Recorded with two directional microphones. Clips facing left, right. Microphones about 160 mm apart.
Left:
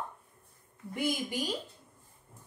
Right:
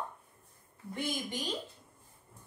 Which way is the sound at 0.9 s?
10° left (ahead or behind).